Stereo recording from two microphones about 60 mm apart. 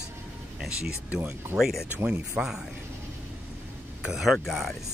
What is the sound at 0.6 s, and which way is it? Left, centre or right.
Speech, centre.